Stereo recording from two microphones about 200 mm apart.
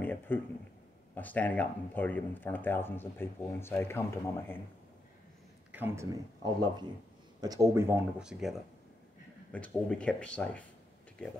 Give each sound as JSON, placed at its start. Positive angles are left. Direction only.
{"t": 0.0, "sound": "a sound", "side_deg": 10}
{"t": 1.1, "sound": "speech", "side_deg": 10}
{"t": 5.7, "sound": "speech", "side_deg": -10}